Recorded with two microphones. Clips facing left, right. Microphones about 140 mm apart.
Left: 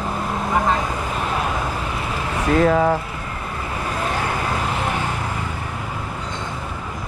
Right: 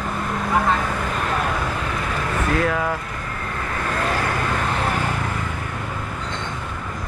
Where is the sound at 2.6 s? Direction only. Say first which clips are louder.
Left 9 dB; 30° left (ahead or behind).